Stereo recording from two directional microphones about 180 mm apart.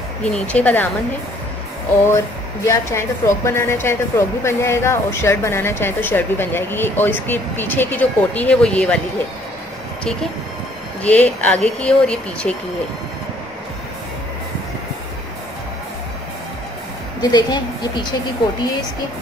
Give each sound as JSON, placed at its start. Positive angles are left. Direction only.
{"t": 0.2, "sound": "speech", "side_deg": 5}
{"t": 2.0, "sound": "speech", "side_deg": 15}
{"t": 11.0, "sound": "speech", "side_deg": 10}
{"t": 17.2, "sound": "speech", "side_deg": 20}